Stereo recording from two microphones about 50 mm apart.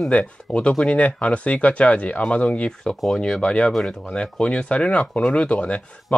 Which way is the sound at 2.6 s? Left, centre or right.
Centre.